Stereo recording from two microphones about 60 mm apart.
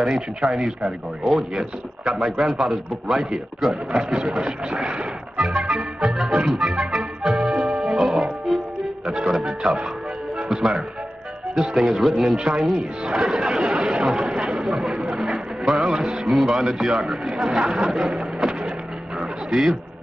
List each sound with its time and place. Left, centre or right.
0.0 s speech: centre
5.7 s music: centre
9.0 s music: centre
9.3 s speech: centre
10.5 s music: centre
11.6 s speech: centre
14.0 s a sound: centre
16.3 s speech: centre